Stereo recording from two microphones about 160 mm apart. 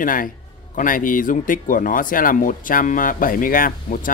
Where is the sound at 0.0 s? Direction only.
60° left (ahead or behind).